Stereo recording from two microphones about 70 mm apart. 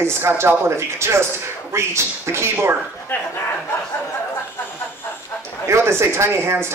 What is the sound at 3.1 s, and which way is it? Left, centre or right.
Speech, left.